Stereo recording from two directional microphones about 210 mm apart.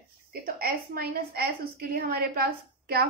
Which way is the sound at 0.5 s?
45° right (ahead or behind).